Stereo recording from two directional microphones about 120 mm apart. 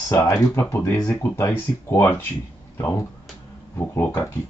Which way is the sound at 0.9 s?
30° left (ahead or behind).